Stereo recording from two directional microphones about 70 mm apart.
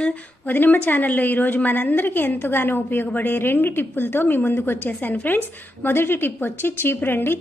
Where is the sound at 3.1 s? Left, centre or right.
Left.